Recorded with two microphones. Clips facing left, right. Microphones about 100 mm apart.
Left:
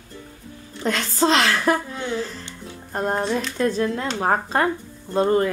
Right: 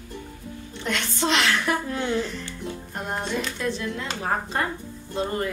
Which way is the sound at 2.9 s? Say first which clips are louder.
Left 8 dB; 40° left (ahead or behind).